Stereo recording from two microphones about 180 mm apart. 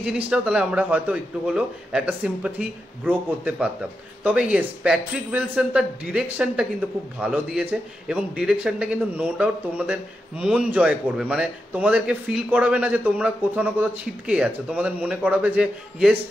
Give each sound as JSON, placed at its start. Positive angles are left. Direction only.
{"t": 0.0, "sound": "a man's voice", "side_deg": -5}